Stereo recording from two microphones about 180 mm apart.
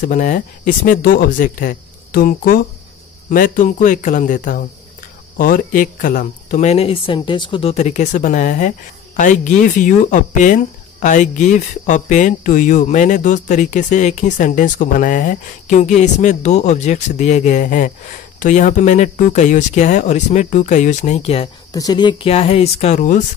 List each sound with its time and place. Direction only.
0.0 s a woman's voice: 45° left (ahead or behind)
21.7 s speech: 25° left (ahead or behind); by 23.2 s 45° left (ahead or behind)